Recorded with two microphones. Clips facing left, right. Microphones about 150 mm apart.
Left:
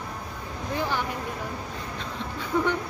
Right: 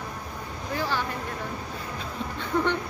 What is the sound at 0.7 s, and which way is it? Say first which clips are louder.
Speech: even; 20° left (ahead or behind).